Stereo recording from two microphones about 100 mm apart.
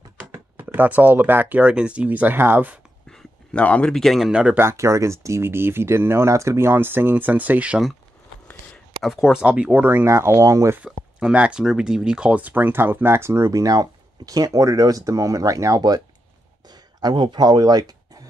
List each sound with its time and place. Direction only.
0.3 s speech: 20° right (ahead or behind)
3.1 s a sound: 5° left (ahead or behind)
3.6 s speech: 15° left (ahead or behind)
3.9 s speech: 5° left (ahead or behind)
4.3 s speech: 10° right (ahead or behind)
4.6 s speech: 30° right (ahead or behind); by 7.9 s 10° right (ahead or behind)
9.0 s speech: 5° right (ahead or behind); by 10.8 s 30° right (ahead or behind)
10.8 s speech: 5° right (ahead or behind); by 16.0 s 40° right (ahead or behind)
16.6 s a sound: 45° right (ahead or behind)